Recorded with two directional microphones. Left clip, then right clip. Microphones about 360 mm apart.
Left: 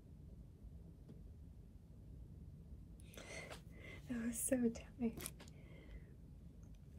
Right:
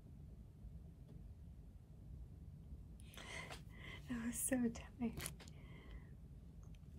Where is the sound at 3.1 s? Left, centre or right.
Centre.